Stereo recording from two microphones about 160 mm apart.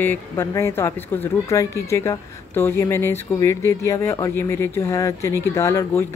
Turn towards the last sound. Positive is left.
turn(degrees=20)  # may be behind; listen again after turning